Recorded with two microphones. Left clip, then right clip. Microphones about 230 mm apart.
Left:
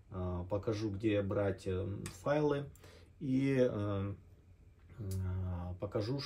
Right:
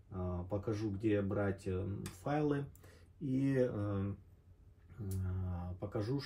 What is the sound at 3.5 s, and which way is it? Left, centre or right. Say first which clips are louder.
Speech: left 4 dB; centre.